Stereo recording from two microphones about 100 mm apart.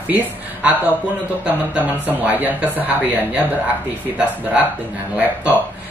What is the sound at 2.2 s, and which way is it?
Speech, 15° right (ahead or behind).